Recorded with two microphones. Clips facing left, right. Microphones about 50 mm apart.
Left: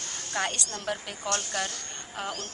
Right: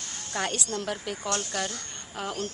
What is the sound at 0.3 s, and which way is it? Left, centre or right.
A woman's voice, centre.